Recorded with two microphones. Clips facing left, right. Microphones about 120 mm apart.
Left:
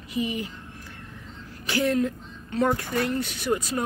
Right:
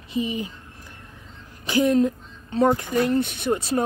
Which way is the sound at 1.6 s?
20° right (ahead or behind).